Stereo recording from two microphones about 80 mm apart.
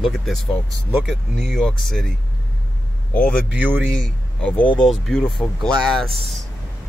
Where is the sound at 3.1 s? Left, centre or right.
Centre.